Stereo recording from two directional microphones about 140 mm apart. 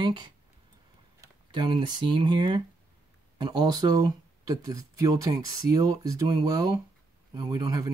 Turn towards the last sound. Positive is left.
turn(degrees=-25)  # may be behind; listen again after turning